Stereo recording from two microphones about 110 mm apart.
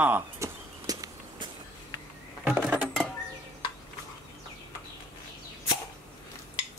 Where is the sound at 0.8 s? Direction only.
35° right (ahead or behind).